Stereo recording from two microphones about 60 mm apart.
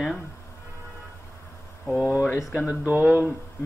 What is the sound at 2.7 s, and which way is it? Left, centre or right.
Speech, right.